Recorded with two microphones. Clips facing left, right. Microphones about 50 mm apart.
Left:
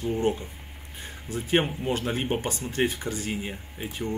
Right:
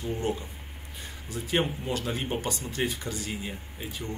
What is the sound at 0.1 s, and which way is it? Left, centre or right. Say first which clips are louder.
Speech: left 4 dB; left.